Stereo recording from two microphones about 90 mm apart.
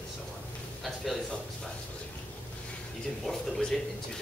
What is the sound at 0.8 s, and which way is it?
Speech, centre (ahead or behind).